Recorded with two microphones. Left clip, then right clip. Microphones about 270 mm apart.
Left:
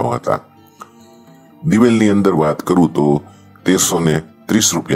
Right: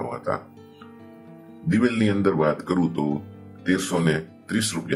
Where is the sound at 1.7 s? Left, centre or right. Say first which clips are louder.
Left 10 dB; left.